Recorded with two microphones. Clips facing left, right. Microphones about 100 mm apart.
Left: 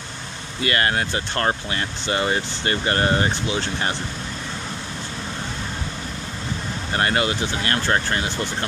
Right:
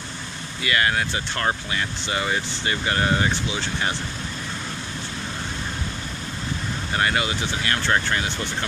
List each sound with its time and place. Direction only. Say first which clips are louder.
0.7 s speech: left 1 dB; 45° left (ahead or behind)
7.0 s speech: left 2 dB; 40° left (ahead or behind)